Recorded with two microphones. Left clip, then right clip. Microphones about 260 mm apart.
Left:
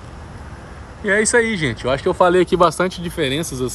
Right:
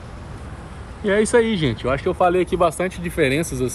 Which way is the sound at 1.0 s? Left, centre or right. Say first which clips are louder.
Left 1 dB; centre.